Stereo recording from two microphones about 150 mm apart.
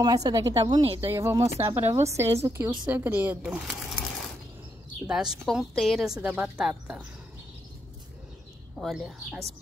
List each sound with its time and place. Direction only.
0.0 s a woman's voice: 25° right (ahead or behind)
1.0 s a woman's voice: 15° right (ahead or behind)
5.0 s a woman's voice: 5° right (ahead or behind)
8.7 s a woman's voice: centre (ahead or behind)